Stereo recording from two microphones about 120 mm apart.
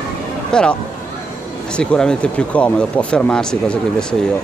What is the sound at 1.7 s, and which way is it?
Speech, 10° left (ahead or behind).